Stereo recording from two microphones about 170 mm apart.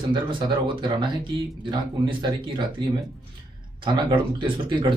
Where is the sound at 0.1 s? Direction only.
30° right (ahead or behind).